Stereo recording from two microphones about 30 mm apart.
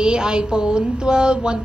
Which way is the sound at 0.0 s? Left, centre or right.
Right.